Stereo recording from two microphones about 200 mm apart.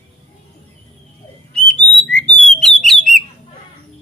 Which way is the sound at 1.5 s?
5° left (ahead or behind).